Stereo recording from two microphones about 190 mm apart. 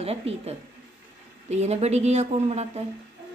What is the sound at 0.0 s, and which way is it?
A woman's voice, 30° right (ahead or behind).